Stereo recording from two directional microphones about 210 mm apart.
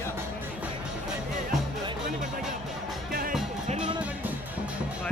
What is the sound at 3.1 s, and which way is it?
Music, 45° right (ahead or behind).